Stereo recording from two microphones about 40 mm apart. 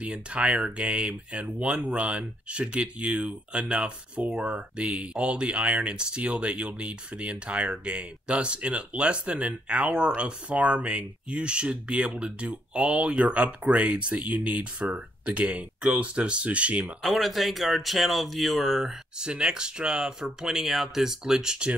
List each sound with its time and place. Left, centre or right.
0.0 s speech: right
17.0 s speech: centre
19.1 s speech: right